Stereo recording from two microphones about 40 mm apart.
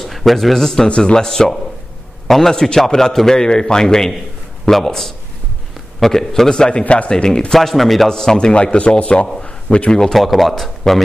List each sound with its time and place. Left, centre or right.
0.0 s speech: centre
0.8 s a man's voice: left
1.2 s a man's voice: centre
6.8 s speech: left
7.1 s a man's voice: centre
8.1 s a man's voice: centre
10.1 s speech: centre